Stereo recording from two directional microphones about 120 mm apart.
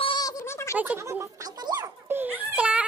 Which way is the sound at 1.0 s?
25° right (ahead or behind).